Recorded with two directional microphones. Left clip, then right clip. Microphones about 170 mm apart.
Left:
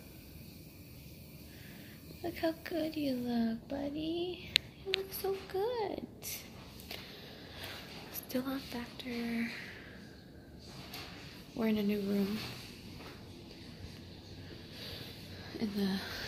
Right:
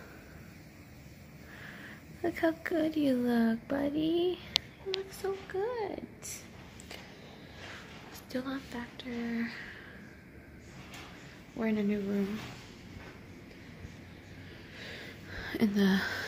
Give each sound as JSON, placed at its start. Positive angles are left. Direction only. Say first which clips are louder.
{"t": 2.2, "sound": "speech", "louder": "right 5 dB", "side_deg": -35}
{"t": 5.2, "sound": "speech", "louder": "right 3 dB", "side_deg": -5}
{"t": 8.3, "sound": "speech", "louder": "even", "side_deg": 5}
{"t": 11.5, "sound": "speech", "louder": "right 1 dB", "side_deg": 0}
{"t": 15.4, "sound": "speech", "louder": "right 8 dB", "side_deg": -45}